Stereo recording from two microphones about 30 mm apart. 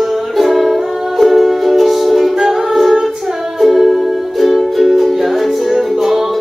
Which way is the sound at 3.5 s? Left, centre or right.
Centre.